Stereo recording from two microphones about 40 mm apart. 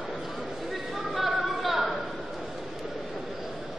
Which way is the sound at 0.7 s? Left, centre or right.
Centre.